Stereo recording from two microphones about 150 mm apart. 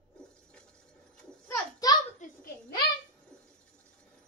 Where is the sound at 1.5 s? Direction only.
25° left (ahead or behind).